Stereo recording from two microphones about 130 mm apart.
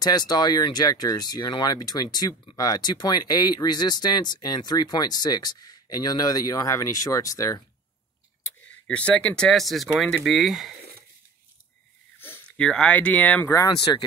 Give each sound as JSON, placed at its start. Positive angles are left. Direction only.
{"t": 0.0, "sound": "speech", "side_deg": 30}
{"t": 8.5, "sound": "speech", "side_deg": 10}
{"t": 12.2, "sound": "speech", "side_deg": 10}
{"t": 13.5, "sound": "speech", "side_deg": 30}